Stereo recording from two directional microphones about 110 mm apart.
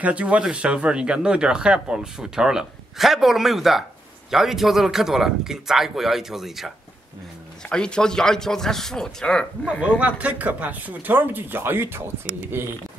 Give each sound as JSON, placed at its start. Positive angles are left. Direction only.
{"t": 0.0, "sound": "speech", "side_deg": -10}
{"t": 7.6, "sound": "speech", "side_deg": 10}
{"t": 9.7, "sound": "speech", "side_deg": -10}